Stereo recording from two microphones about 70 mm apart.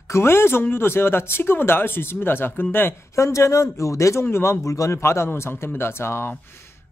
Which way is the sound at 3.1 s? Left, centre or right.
Left.